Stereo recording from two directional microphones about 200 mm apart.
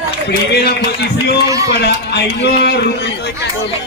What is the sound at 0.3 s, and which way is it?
A man's voice, 55° left (ahead or behind).